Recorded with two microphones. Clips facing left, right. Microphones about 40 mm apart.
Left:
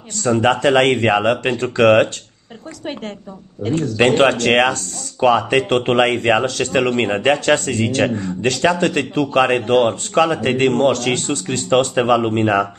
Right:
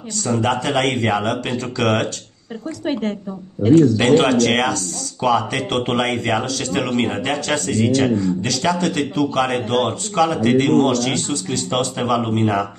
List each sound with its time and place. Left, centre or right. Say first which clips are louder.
0.2 s speech: left 5 dB; left
2.8 s a woman's voice: right 5 dB; centre
3.9 s speech: left 1 dB; left